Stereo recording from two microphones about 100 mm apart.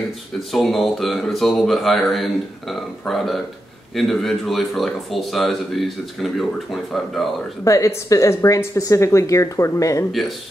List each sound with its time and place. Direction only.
0.7 s speech: centre (ahead or behind)
7.6 s speech: 35° left (ahead or behind)